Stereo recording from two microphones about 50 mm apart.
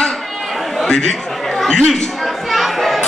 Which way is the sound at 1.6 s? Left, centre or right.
Centre.